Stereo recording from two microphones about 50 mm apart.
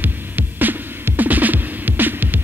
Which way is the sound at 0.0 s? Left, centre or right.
Right.